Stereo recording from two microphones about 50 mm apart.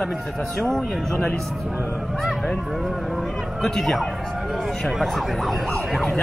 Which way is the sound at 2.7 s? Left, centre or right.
Centre.